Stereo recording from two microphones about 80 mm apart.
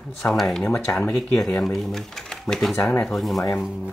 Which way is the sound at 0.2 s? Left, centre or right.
Centre.